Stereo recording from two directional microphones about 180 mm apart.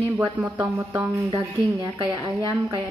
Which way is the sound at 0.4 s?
10° right (ahead or behind).